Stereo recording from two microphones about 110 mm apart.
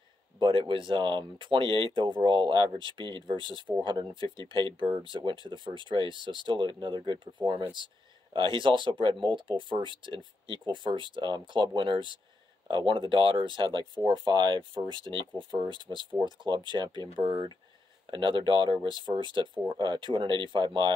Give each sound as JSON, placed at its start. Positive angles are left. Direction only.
{"t": 0.4, "sound": "speech", "side_deg": -50}